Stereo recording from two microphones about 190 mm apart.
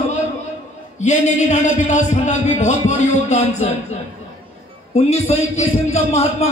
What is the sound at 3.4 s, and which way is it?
A man's voice, 35° left (ahead or behind).